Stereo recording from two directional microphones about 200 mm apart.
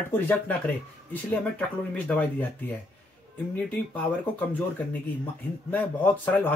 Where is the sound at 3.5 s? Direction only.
10° left (ahead or behind).